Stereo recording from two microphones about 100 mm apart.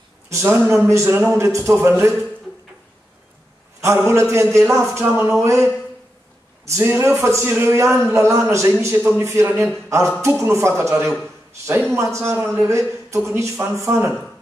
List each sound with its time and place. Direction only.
0.3 s a man's voice: 25° right (ahead or behind)
3.8 s a man's voice: 30° right (ahead or behind)